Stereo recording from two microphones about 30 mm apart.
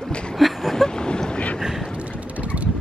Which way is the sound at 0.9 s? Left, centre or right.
Left.